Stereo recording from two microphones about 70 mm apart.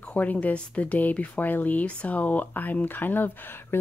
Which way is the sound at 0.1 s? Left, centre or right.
Centre.